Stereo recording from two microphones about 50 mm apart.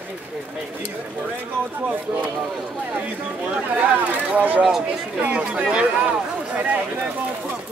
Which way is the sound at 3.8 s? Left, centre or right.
Right.